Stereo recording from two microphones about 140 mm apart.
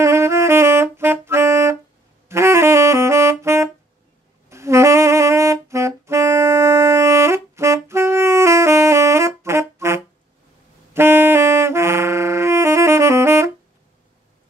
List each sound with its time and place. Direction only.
0.0 s saxophone: 20° right (ahead or behind)